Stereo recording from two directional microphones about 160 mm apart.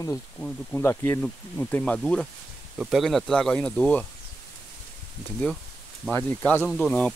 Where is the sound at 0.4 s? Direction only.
10° left (ahead or behind).